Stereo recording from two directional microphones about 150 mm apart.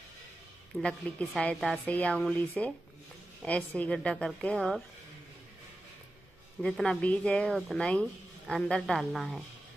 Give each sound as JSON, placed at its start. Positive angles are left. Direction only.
{"t": 0.7, "sound": "a woman's voice", "side_deg": 5}
{"t": 6.6, "sound": "speech", "side_deg": 5}